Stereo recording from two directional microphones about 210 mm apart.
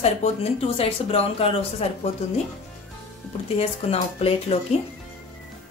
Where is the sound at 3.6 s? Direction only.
30° left (ahead or behind).